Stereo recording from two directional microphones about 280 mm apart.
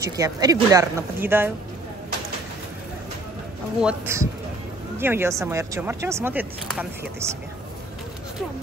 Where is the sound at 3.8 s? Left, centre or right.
Centre.